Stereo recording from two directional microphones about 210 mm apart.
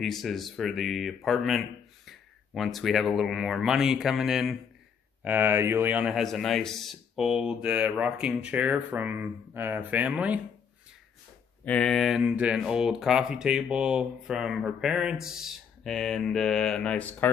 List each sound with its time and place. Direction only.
0.0 s speech: centre (ahead or behind)
11.6 s speech: 5° left (ahead or behind)